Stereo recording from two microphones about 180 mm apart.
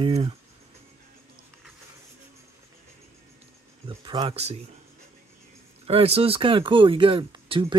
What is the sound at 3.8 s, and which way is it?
Speech, 25° right (ahead or behind).